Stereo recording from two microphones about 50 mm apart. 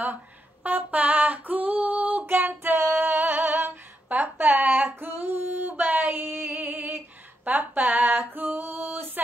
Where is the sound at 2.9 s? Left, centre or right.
Right.